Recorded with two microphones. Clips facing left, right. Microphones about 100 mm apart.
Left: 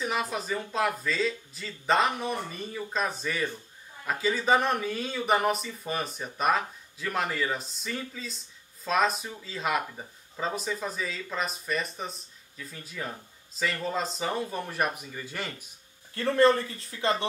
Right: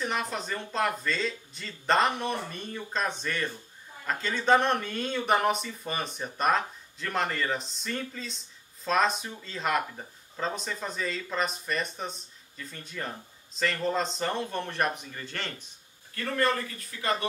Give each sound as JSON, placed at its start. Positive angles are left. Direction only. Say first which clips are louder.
{"t": 0.0, "sound": "speech", "louder": "left 1 dB", "side_deg": 5}
{"t": 16.2, "sound": "speech", "louder": "left 6 dB", "side_deg": 25}